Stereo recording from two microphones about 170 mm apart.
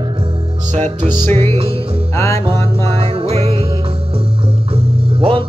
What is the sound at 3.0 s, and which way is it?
Music, 35° right (ahead or behind).